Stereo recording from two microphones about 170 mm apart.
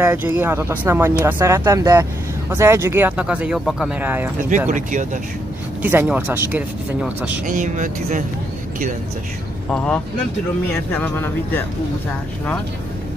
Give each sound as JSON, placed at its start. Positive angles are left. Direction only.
{"t": 0.0, "sound": "speech", "side_deg": -15}
{"t": 4.5, "sound": "speech", "side_deg": -50}
{"t": 5.8, "sound": "speech", "side_deg": -10}
{"t": 7.4, "sound": "speech", "side_deg": -50}
{"t": 9.7, "sound": "speech", "side_deg": 5}